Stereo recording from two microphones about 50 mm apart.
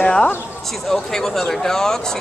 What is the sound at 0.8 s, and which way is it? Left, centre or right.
Speech, centre.